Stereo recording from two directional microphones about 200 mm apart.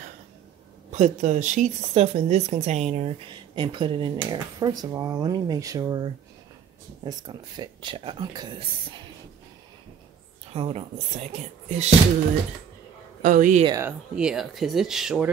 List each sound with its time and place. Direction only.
0.9 s speech: 35° right (ahead or behind); by 8.6 s 20° right (ahead or behind)
10.5 s speech: 30° right (ahead or behind)
13.2 s speech: 40° right (ahead or behind)
13.7 s speech: 10° right (ahead or behind)